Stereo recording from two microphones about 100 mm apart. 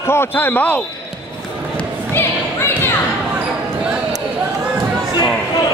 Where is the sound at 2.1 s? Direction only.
25° left (ahead or behind).